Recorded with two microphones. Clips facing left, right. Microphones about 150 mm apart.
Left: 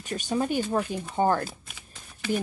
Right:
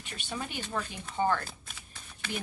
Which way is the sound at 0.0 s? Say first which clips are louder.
Left 11 dB; 40° left (ahead or behind).